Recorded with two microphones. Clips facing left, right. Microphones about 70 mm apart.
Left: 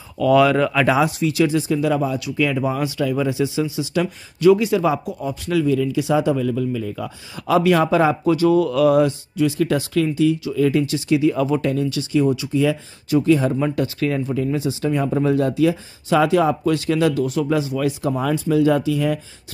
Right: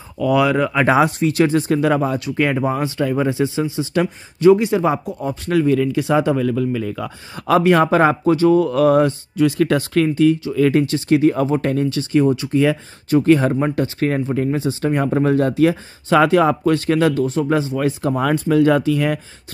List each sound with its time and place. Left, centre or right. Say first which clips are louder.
0.2 s speech: left 1 dB; centre
0.8 s speech: right 3 dB; right
7.3 s speech: right 2 dB; right
13.7 s speech: right 2 dB; right